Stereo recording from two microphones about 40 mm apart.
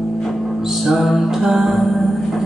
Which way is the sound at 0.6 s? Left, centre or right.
Centre.